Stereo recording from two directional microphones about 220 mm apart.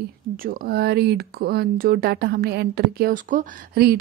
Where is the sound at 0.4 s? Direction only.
40° right (ahead or behind).